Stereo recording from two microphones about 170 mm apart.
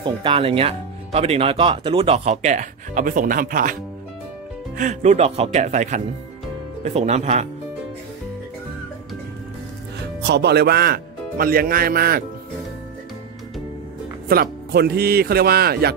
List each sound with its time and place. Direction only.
0.0 s speech: 30° right (ahead or behind); by 3.7 s 55° right (ahead or behind)
4.7 s speech: 45° right (ahead or behind)
10.2 s a man's voice: 80° right; by 12.3 s 60° right (ahead or behind)
14.3 s a man's voice: 65° right (ahead or behind)